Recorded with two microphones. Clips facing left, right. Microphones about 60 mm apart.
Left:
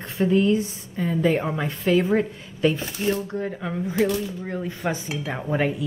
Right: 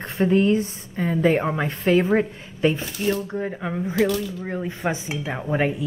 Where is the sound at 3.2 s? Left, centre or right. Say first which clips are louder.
Right 1 dB; centre.